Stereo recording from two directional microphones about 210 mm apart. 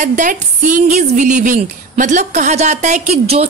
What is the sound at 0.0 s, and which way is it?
A woman's voice, 35° right (ahead or behind).